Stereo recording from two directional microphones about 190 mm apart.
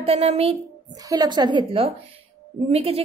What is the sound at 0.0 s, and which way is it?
Speech, 30° right (ahead or behind).